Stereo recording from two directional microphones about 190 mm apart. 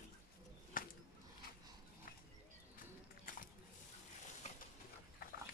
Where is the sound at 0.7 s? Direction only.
45° left (ahead or behind).